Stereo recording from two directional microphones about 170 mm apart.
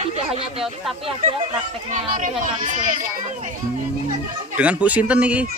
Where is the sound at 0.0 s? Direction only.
35° right (ahead or behind).